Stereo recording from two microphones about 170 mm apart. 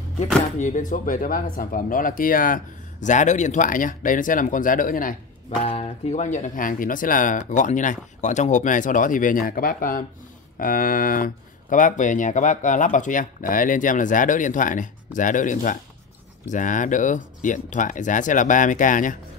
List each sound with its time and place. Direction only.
0.6 s speech: 45° left (ahead or behind)
5.6 s speech: 40° left (ahead or behind)